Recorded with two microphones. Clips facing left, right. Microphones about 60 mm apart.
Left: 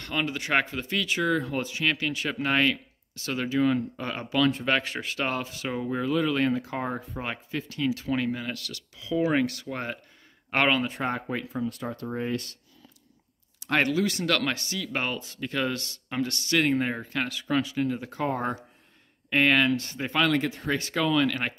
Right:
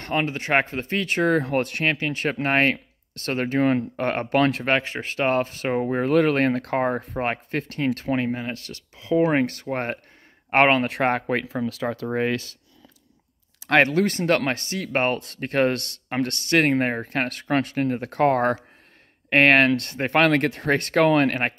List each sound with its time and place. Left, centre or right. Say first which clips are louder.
0.0 s speech: right 5 dB; right
1.4 s speech: right 6 dB; right
1.9 s speech: right 4 dB; right
4.6 s speech: right 3 dB; right
8.2 s speech: right 3 dB; right
10.9 s speech: right 7 dB; right
14.1 s speech: right 5 dB; right
15.1 s speech: right 7 dB; right